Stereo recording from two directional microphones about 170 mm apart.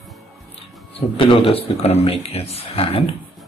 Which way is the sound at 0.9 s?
35° left (ahead or behind).